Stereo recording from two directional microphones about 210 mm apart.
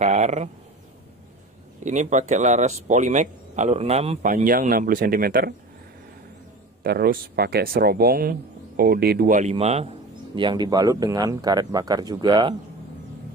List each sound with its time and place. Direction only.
0.0 s speech: 35° right (ahead or behind)
1.8 s speech: 35° right (ahead or behind)
6.8 s speech: 45° right (ahead or behind); by 12.5 s 20° right (ahead or behind)